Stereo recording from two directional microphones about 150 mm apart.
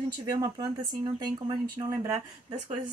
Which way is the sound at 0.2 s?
25° right (ahead or behind).